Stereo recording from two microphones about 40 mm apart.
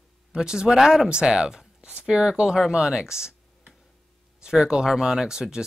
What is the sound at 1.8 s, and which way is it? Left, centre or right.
Speech, right.